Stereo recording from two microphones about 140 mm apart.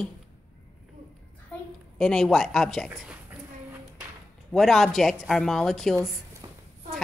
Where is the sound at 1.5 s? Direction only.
10° left (ahead or behind).